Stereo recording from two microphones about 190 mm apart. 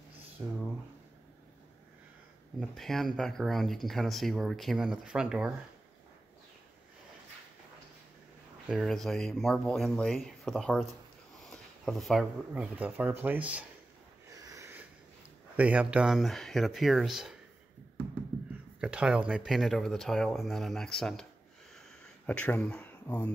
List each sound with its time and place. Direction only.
0.4 s speech: 5° right (ahead or behind)
2.6 s speech: centre (ahead or behind)
8.6 s speech: centre (ahead or behind)
14.3 s a sound: 20° right (ahead or behind)
15.5 s speech: 10° right (ahead or behind)
18.5 s speech: 5° right (ahead or behind)
21.7 s a sound: 5° left (ahead or behind)